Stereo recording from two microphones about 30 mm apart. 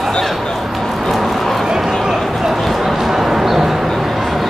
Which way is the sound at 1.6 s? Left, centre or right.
Centre.